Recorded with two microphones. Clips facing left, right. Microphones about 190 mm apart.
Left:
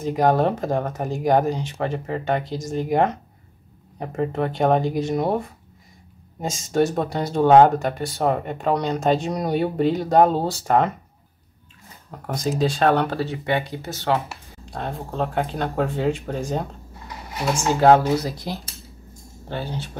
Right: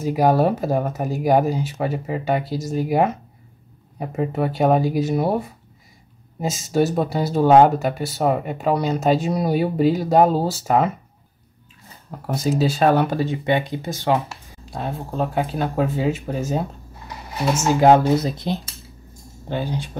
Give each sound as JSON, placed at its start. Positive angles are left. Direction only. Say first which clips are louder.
{"t": 0.0, "sound": "speech", "louder": "right 2 dB", "side_deg": -5}
{"t": 12.3, "sound": "speech", "louder": "right 2 dB", "side_deg": -5}
{"t": 17.7, "sound": "speech", "louder": "right 1 dB", "side_deg": -15}